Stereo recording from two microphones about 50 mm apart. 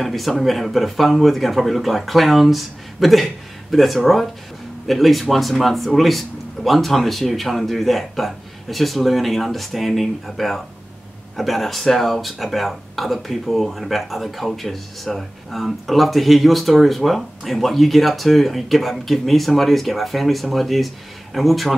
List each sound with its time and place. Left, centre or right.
0.0 s speech: centre